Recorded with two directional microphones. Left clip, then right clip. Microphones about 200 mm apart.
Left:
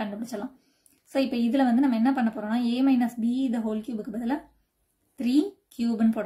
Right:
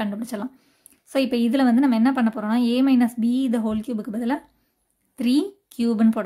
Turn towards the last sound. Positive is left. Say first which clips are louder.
# right 5 dB
turn(degrees=-40)  # may be behind; listen again after turning